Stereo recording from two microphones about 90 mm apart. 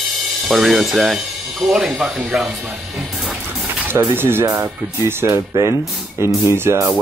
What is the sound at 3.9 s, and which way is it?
Speech, 25° right (ahead or behind).